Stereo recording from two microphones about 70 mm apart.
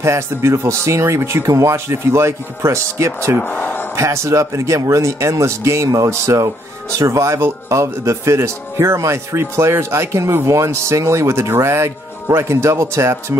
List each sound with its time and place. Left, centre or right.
0.0 s speech: right
3.4 s speech: left
3.9 s speech: right